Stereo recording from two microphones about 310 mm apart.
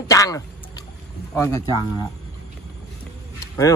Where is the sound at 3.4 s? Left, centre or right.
Centre.